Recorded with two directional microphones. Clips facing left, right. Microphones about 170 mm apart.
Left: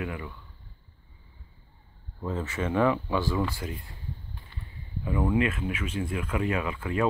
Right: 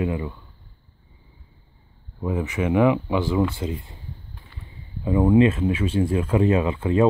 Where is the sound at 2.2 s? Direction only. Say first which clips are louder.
Right 6 dB; 15° right (ahead or behind).